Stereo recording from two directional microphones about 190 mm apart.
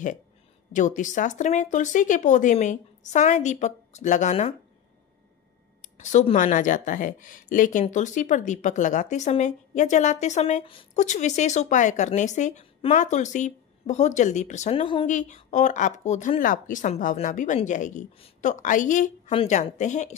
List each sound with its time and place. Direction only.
0.7 s speech: 40° left (ahead or behind)
5.8 s speech: 40° left (ahead or behind)
15.0 s speech: 40° left (ahead or behind)